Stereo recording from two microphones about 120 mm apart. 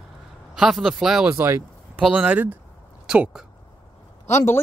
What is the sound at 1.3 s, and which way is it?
Speech, 20° right (ahead or behind).